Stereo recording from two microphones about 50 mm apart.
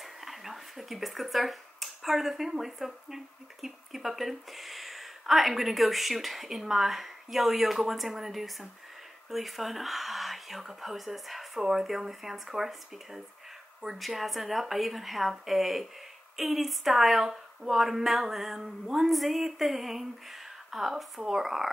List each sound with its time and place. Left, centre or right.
0.0 s speech: centre